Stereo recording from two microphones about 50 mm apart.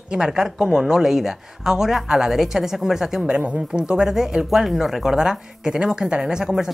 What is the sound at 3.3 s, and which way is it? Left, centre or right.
Speech, centre.